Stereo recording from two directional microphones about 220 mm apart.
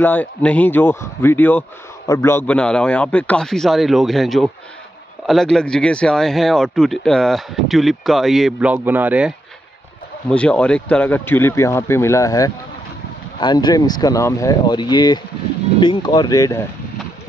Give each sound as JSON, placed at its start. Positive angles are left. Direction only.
{"t": 0.0, "sound": "a man's voice", "side_deg": 10}
{"t": 10.3, "sound": "a man's voice", "side_deg": 5}